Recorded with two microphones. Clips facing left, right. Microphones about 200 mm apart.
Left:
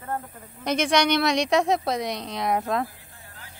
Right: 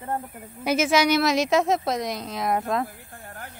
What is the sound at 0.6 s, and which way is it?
A woman's voice, 5° right (ahead or behind).